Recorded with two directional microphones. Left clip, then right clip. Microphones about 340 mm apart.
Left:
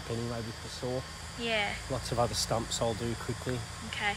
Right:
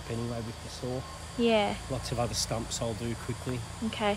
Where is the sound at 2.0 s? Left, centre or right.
Centre.